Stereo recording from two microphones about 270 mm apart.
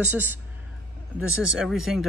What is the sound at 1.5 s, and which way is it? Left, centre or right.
Speech, centre.